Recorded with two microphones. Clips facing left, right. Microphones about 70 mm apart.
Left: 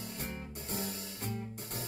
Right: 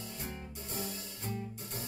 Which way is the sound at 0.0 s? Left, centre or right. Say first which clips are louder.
Left 1 dB; left.